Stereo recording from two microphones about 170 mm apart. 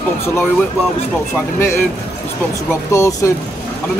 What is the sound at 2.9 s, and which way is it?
Speech, 20° left (ahead or behind).